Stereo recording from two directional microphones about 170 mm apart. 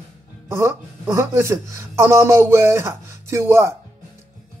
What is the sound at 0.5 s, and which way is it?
A man's voice, 15° right (ahead or behind).